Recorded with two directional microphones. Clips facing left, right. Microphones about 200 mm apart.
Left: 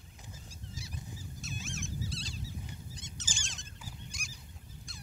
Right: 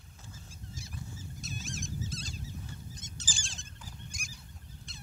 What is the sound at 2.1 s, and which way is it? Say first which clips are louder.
Goose: right 1 dB; 45° right (ahead or behind).